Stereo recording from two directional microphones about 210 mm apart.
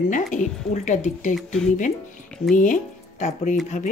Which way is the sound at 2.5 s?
40° left (ahead or behind).